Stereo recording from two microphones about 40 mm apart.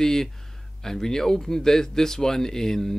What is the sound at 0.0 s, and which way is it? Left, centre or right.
Speech, centre.